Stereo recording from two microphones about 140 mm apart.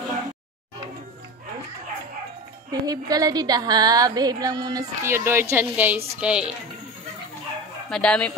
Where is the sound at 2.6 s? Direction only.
25° right (ahead or behind); by 6.5 s 5° right (ahead or behind).